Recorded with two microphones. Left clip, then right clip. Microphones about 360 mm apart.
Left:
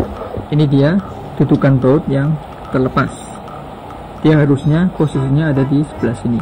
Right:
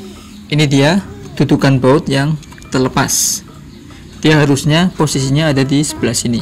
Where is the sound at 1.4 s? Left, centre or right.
Centre.